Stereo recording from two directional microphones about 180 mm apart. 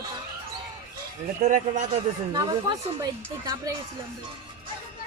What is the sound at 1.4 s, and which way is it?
Speech, 40° right (ahead or behind).